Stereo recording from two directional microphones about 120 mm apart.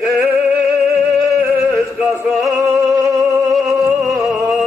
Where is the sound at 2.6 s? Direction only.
25° right (ahead or behind).